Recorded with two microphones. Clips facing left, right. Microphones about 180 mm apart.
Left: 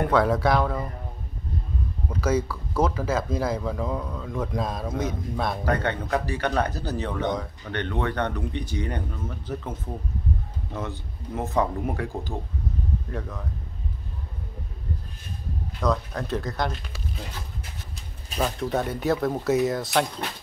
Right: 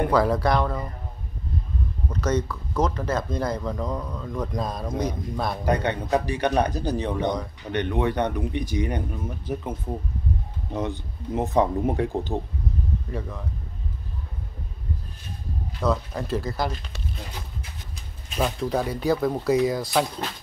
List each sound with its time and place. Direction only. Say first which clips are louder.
0.1 s speech: even; centre (ahead or behind)
2.0 s speech: left 1 dB; 5° left (ahead or behind)
5.7 s speech: right 4 dB; 15° right (ahead or behind)
13.1 s speech: right 1 dB; centre (ahead or behind)
15.8 s speech: right 1 dB; 5° right (ahead or behind)
18.4 s speech: right 1 dB; centre (ahead or behind)